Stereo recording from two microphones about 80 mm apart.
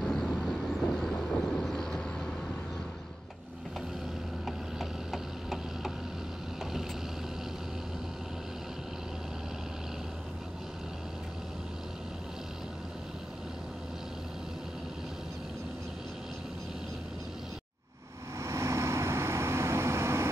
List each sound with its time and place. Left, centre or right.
0.0 s vehicle: centre
4.5 s a sound: centre
18.4 s vehicle: right